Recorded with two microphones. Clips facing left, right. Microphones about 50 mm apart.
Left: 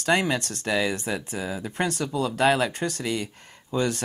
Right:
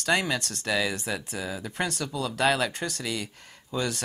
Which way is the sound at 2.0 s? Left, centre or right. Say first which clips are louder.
Left 4 dB; centre.